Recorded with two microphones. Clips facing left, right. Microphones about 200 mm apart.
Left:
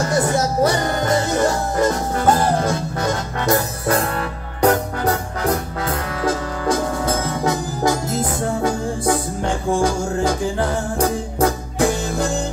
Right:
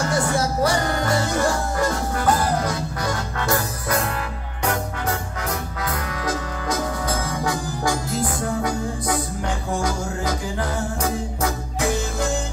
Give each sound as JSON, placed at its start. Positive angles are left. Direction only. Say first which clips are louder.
{"t": 0.0, "sound": "music", "louder": "left 3 dB", "side_deg": 20}
{"t": 4.6, "sound": "music", "louder": "left 8 dB", "side_deg": 35}